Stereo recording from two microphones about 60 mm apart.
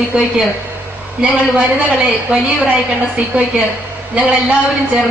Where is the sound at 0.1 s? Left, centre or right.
Centre.